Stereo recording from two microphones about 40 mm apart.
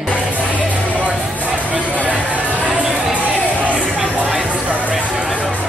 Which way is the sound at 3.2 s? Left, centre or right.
Right.